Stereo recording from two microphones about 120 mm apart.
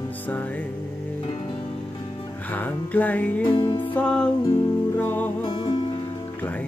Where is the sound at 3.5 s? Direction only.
40° left (ahead or behind).